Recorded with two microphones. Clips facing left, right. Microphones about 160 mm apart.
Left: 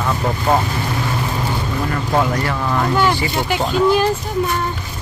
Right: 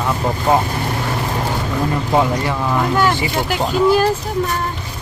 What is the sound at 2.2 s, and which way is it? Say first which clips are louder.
Speech: right 1 dB; 15° right (ahead or behind).